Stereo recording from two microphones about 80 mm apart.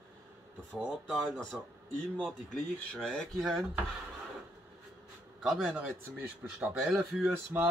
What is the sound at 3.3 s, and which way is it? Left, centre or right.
Speech, centre.